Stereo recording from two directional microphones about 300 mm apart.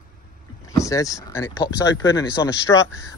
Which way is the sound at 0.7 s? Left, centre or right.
Centre.